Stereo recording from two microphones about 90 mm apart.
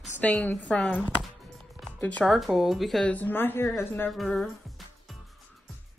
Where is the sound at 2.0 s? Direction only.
15° left (ahead or behind).